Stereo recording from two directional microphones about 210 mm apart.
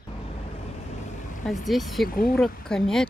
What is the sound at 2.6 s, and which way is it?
Speech, 5° left (ahead or behind).